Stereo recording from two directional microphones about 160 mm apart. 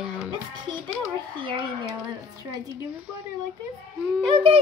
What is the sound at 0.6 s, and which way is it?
Music, 30° right (ahead or behind).